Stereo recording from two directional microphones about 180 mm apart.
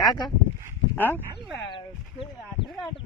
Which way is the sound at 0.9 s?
10° left (ahead or behind).